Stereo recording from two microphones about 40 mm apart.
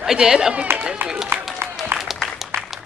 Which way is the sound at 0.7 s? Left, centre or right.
Right.